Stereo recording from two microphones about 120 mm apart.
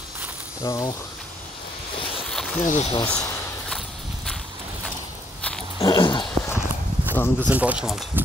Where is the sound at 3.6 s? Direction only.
5° left (ahead or behind).